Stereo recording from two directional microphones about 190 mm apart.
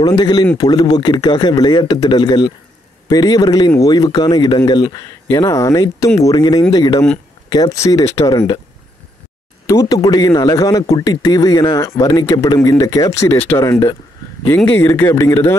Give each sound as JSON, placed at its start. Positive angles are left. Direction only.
{"t": 0.0, "sound": "speech", "side_deg": 20}
{"t": 9.7, "sound": "speech", "side_deg": 20}